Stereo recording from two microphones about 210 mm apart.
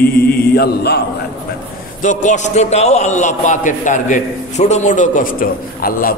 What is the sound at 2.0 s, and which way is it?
A man's voice, 35° left (ahead or behind).